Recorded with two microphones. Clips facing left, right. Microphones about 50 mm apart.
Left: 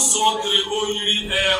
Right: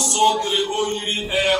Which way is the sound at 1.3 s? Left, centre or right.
Left.